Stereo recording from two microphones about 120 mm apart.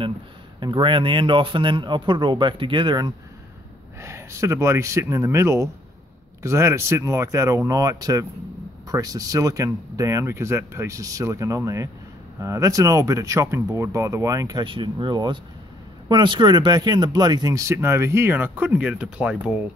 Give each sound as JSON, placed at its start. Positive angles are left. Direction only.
{"t": 0.6, "sound": "speech", "side_deg": -40}
{"t": 4.0, "sound": "speech", "side_deg": -25}
{"t": 14.6, "sound": "speech", "side_deg": -40}